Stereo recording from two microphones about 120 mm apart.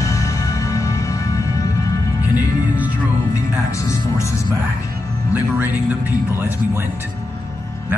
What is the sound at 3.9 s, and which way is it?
Music, 25° left (ahead or behind).